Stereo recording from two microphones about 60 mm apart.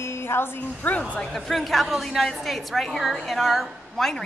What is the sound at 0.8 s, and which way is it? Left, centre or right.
Speech, left.